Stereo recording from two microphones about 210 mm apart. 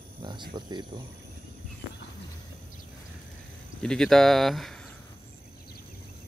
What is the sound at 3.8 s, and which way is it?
Speech, 5° left (ahead or behind).